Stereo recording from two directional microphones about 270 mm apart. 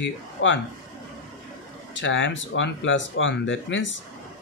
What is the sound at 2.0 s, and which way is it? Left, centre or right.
Speech, left.